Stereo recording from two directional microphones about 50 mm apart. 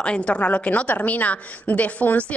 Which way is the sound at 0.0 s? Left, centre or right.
Left.